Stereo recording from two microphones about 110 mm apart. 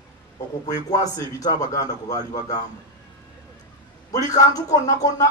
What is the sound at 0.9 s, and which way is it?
A man's voice, 35° left (ahead or behind).